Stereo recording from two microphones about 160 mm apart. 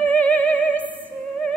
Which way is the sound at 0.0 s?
10° left (ahead or behind).